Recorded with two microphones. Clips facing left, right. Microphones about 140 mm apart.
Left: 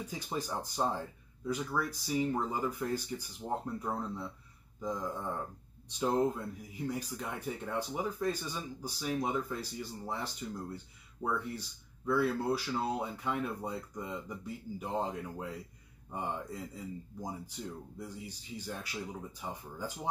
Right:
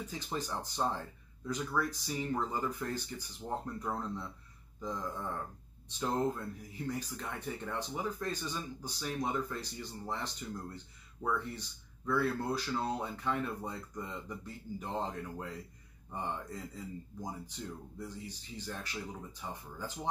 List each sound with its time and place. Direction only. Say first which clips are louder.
0.0 s speech: left 1 dB; 10° left (ahead or behind)